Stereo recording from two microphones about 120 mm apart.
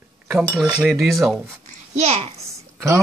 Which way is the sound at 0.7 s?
Centre (ahead or behind).